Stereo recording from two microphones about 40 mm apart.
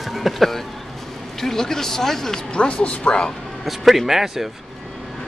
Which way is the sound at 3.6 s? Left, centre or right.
Centre.